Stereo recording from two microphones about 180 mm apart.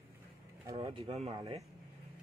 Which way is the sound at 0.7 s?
30° right (ahead or behind).